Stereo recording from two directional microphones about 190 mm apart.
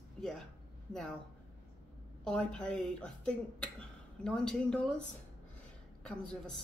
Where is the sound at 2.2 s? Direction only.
5° left (ahead or behind).